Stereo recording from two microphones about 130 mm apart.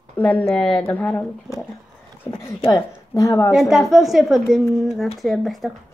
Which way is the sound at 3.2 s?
25° left (ahead or behind).